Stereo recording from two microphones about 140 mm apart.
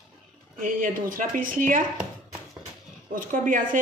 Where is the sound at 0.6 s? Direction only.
75° right (ahead or behind).